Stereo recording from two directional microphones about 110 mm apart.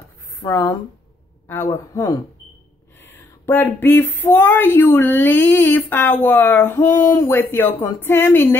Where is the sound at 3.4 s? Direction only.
20° left (ahead or behind).